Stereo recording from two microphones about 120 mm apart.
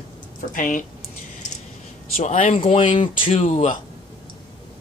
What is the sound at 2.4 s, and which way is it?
Speech, 50° left (ahead or behind).